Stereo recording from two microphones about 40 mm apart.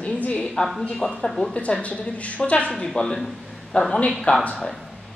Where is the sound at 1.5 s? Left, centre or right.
Left.